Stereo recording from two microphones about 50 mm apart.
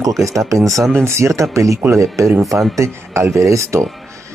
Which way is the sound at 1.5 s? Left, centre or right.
Right.